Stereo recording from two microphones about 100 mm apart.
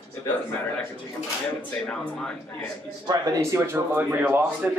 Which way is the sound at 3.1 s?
35° right (ahead or behind).